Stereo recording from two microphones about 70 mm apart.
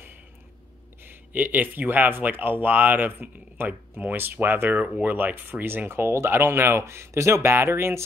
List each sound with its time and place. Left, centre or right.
1.0 s speech: right